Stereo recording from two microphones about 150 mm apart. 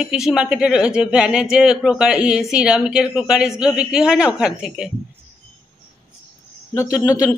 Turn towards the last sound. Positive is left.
turn(degrees=25)  # may be behind; listen again after turning